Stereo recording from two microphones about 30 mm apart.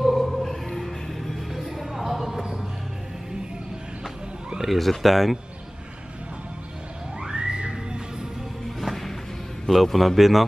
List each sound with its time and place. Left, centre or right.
0.0 s music: centre
1.6 s a sound: centre
4.6 s speech: centre
7.2 s music: right
8.8 s music: centre
9.9 s speech: centre